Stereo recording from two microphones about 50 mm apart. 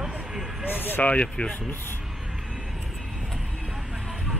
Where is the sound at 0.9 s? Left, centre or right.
Left.